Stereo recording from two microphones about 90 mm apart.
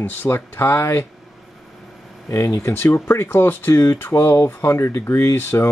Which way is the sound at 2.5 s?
30° left (ahead or behind).